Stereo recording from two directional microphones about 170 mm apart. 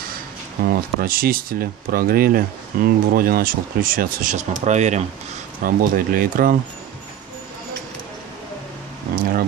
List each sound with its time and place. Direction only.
0.7 s speech: 60° right (ahead or behind)
5.8 s speech: 55° right (ahead or behind)
9.1 s a sound: 55° right (ahead or behind)